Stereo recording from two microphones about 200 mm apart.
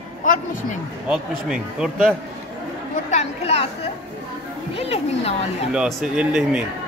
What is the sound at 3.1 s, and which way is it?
Speech, 35° left (ahead or behind).